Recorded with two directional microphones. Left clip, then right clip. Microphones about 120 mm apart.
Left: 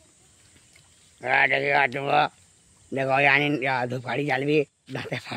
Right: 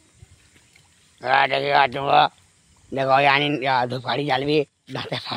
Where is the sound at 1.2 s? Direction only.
10° right (ahead or behind).